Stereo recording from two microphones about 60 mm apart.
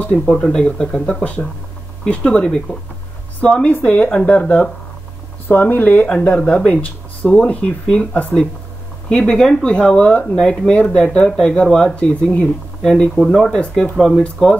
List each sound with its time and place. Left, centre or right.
0.2 s speech: centre; by 4.1 s left
4.1 s speech: centre
9.1 s speech: centre
13.2 s speech: centre
13.5 s speech: centre
13.8 s speech: centre